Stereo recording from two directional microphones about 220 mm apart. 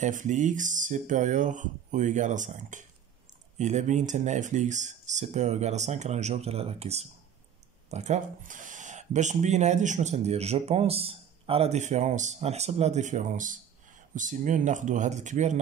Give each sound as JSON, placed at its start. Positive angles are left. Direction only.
{"t": 0.0, "sound": "speech", "side_deg": -35}